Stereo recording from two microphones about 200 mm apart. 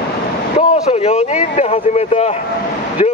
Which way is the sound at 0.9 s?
30° left (ahead or behind).